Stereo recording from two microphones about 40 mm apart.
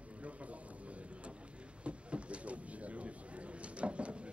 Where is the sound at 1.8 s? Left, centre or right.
Right.